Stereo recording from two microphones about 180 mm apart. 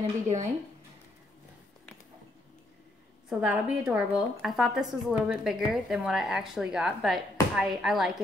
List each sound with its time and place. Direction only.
0.0 s speech: 40° right (ahead or behind)
3.3 s a woman's voice: 5° right (ahead or behind)